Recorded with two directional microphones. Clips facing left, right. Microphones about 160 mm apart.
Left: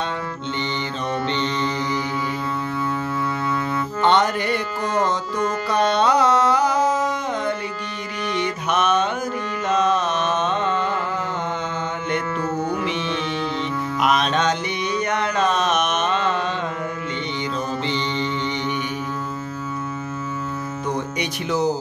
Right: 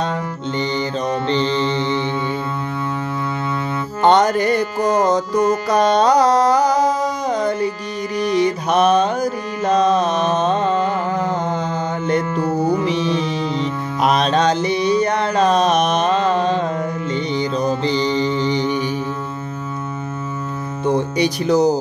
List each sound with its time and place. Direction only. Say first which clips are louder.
1.2 s music: right 6 dB; 35° right (ahead or behind)
4.0 s music: right 5 dB; 40° right (ahead or behind)
8.2 s mantra: right 7 dB; 35° right (ahead or behind)
12.1 s music: right 6 dB; 35° right (ahead or behind)
17.1 s mantra: right 6 dB; 35° right (ahead or behind)
20.8 s music: right 10 dB; 30° right (ahead or behind)